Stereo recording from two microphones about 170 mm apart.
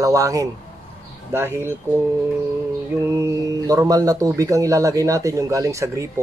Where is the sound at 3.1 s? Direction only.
15° right (ahead or behind).